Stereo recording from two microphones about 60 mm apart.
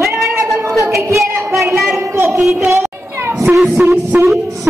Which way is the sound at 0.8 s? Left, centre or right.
Right.